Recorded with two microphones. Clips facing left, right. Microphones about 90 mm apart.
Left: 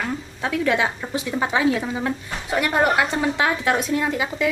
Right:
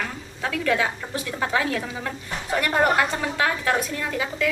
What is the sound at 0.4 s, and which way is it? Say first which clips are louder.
A woman's voice: left 2 dB; 20° left (ahead or behind).